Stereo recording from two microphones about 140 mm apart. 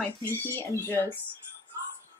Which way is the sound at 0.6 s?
15° left (ahead or behind).